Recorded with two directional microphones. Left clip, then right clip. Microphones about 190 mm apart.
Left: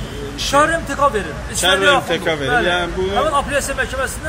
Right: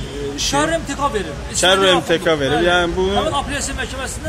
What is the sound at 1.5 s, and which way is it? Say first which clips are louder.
A man's voice: even; 55° right (ahead or behind).